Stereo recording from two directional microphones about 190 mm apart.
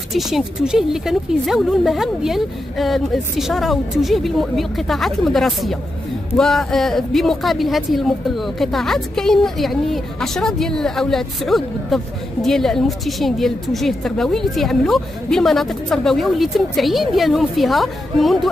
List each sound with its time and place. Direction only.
0.1 s speech: centre (ahead or behind)